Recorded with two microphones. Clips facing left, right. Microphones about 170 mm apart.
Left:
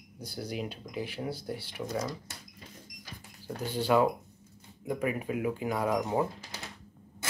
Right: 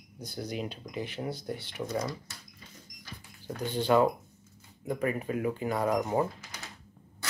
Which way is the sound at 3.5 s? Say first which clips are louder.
Right 1 dB; 10° left (ahead or behind).